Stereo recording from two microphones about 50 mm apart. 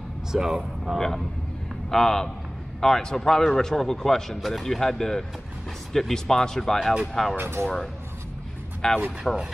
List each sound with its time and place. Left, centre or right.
0.3 s speech: centre
0.9 s a man's voice: centre
7.3 s speech: right
7.6 s a man's voice: centre